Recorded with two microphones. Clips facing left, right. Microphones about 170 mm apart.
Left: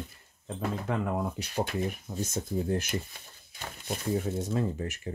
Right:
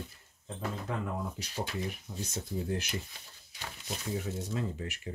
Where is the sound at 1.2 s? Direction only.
60° left (ahead or behind).